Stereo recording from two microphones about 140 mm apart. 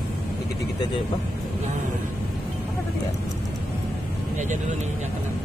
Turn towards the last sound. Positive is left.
turn(degrees=-60)  # may be behind; listen again after turning